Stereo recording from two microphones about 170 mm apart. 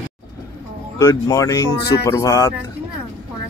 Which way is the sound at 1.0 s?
20° left (ahead or behind).